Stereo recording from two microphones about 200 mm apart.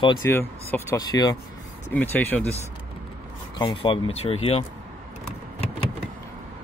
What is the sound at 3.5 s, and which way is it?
Speech, 25° left (ahead or behind).